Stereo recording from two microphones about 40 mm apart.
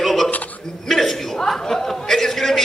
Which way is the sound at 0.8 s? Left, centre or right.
Centre.